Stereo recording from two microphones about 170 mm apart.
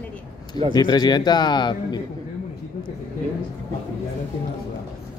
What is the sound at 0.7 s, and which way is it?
Speech, 25° left (ahead or behind).